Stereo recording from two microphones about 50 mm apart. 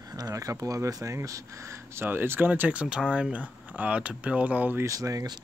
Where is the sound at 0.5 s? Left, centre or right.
Right.